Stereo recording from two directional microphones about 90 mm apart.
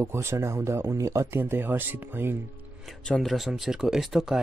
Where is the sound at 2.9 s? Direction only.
Centre (ahead or behind).